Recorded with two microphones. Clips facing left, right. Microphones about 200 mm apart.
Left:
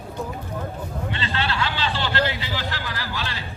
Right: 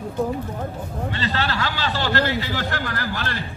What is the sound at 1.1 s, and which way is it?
A man's voice, 40° right (ahead or behind).